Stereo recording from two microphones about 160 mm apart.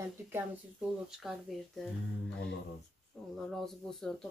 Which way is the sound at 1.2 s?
Centre (ahead or behind).